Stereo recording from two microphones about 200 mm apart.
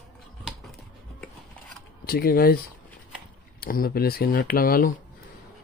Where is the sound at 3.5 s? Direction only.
45° left (ahead or behind).